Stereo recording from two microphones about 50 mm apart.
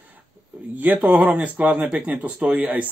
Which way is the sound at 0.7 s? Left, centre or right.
Right.